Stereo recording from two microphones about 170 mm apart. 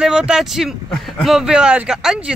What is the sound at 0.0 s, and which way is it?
Speech, 5° right (ahead or behind).